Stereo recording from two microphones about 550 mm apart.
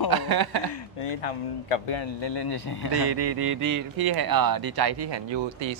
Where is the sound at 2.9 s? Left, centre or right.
Right.